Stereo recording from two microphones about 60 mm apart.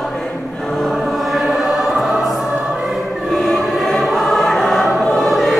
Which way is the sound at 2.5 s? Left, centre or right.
Centre.